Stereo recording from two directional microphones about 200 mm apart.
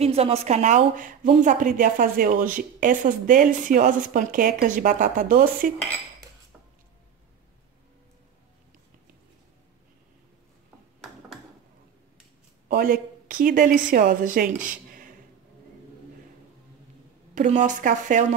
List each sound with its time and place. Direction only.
0.0 s a woman's voice: 30° right (ahead or behind)
12.6 s a woman's voice: 45° right (ahead or behind)
14.6 s a sound: 45° right (ahead or behind)
17.3 s a woman's voice: 40° right (ahead or behind)